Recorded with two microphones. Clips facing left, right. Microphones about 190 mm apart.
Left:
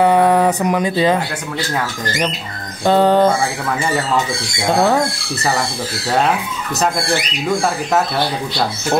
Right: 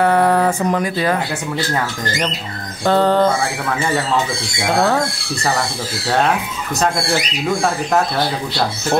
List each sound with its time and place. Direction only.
0.0 s speech: 15° left (ahead or behind)
2.8 s speech: 15° left (ahead or behind)
4.7 s speech: 5° left (ahead or behind)